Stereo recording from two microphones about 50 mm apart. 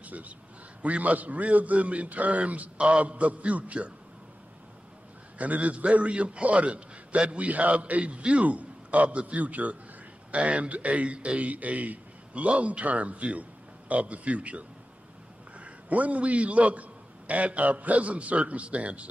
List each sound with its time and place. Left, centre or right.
0.0 s a man's voice: right
5.4 s a man's voice: right
15.6 s a man's voice: right